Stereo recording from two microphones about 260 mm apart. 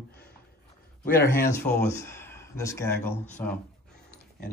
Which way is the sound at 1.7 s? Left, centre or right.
Centre.